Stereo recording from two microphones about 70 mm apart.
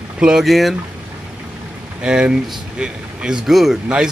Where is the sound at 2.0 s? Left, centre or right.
Centre.